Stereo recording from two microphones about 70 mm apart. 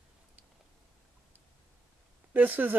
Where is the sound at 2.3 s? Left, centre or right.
Right.